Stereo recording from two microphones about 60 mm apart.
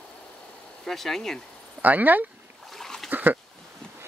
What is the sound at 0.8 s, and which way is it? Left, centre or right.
Speech, centre.